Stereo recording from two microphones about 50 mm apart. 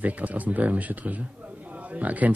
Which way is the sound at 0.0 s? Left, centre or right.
Right.